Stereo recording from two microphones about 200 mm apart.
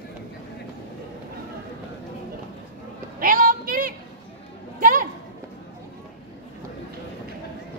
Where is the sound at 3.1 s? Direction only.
45° right (ahead or behind).